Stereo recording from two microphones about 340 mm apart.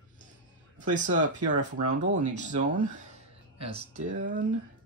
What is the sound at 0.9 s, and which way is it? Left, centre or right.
Speech, right.